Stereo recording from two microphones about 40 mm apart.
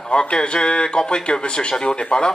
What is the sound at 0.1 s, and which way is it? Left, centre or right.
A man's voice, left.